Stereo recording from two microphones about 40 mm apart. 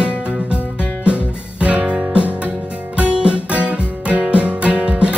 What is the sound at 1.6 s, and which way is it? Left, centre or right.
Music, right.